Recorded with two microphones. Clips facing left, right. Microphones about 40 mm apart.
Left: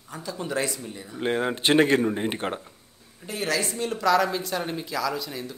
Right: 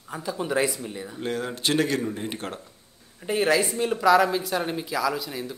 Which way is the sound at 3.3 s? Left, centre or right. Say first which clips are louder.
Right 5 dB; right.